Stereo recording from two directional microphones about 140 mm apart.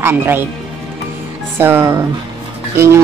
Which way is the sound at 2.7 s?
20° right (ahead or behind).